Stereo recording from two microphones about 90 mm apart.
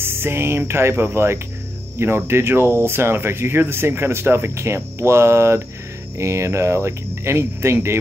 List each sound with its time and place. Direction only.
0.0 s speech: 25° right (ahead or behind)